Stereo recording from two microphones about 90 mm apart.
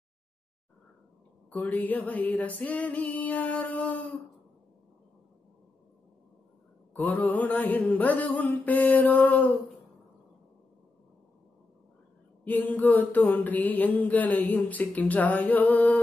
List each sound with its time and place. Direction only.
1.5 s music: 15° left (ahead or behind)
6.9 s mantra: 20° left (ahead or behind)
7.9 s music: 20° left (ahead or behind)
12.4 s mantra: 20° left (ahead or behind)